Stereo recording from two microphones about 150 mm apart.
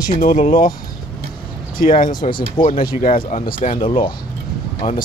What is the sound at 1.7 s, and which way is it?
Speech, 65° left (ahead or behind).